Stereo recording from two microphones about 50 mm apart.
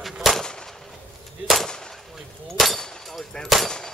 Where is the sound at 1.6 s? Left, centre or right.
Centre.